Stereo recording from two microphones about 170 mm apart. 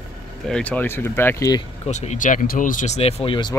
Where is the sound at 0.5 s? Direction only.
5° left (ahead or behind).